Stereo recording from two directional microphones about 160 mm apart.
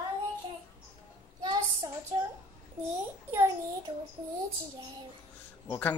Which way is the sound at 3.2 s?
15° right (ahead or behind).